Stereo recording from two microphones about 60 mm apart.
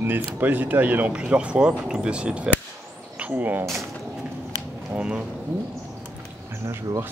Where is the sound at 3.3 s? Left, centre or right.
Right.